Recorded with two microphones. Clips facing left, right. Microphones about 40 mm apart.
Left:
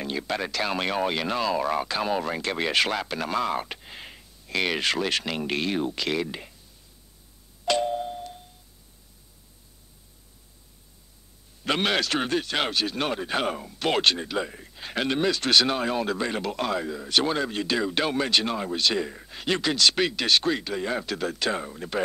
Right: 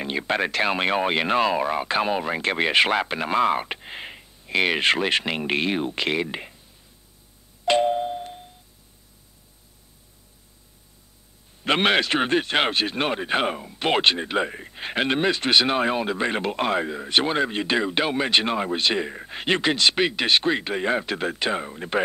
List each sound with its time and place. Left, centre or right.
0.0 s speech: right
7.6 s doorbell: right
11.6 s speech: right